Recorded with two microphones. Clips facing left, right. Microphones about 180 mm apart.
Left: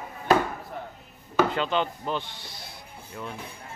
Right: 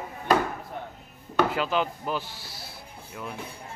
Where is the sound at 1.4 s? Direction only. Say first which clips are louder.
Left 1 dB; 5° right (ahead or behind).